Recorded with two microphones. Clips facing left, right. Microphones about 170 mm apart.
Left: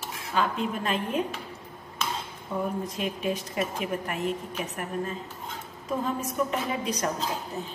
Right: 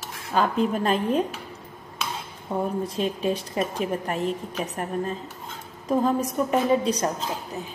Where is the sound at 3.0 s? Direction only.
30° right (ahead or behind).